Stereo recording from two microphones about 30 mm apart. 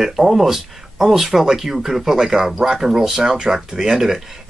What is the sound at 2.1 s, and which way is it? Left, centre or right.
Speech, centre.